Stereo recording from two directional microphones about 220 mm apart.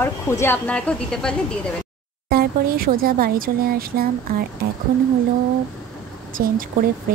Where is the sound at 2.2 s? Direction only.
40° right (ahead or behind).